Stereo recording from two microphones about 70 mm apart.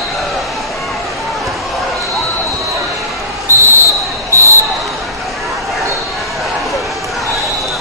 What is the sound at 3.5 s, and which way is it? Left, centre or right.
Basketball bounce, right.